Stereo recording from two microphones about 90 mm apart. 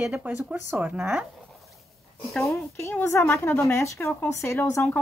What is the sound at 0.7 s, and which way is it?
Speech, 10° right (ahead or behind).